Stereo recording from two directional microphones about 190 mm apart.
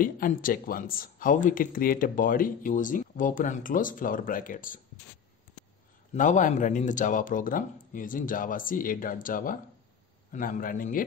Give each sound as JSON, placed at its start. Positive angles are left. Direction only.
{"t": 0.0, "sound": "speech", "side_deg": 45}
{"t": 6.1, "sound": "speech", "side_deg": 40}